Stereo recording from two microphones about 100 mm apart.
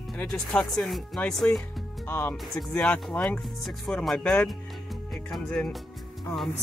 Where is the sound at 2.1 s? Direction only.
20° left (ahead or behind).